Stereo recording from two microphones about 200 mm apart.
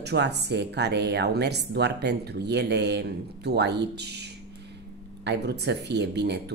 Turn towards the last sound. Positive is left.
turn(degrees=-55)  # may be behind; listen again after turning